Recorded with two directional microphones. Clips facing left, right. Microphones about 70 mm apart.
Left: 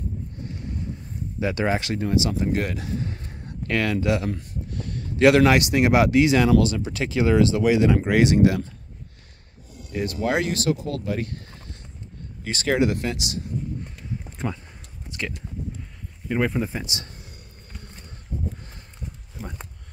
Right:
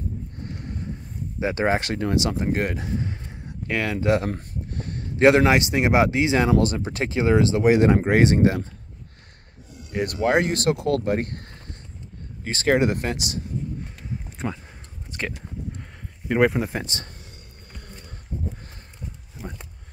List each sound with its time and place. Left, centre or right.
1.4 s speech: right
3.0 s a sound: centre
4.0 s speech: right
6.6 s speech: right
7.7 s speech: right
9.9 s speech: right
12.4 s speech: right
14.4 s speech: centre
15.0 s a sound: right
16.3 s speech: right
16.8 s speech: right